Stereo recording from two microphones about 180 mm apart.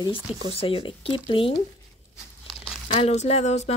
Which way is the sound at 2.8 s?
40° left (ahead or behind).